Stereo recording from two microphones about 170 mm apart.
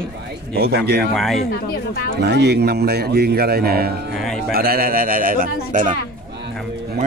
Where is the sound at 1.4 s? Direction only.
65° left (ahead or behind).